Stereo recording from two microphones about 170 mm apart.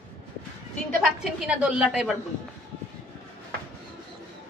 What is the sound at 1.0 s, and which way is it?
A woman's voice, 5° right (ahead or behind).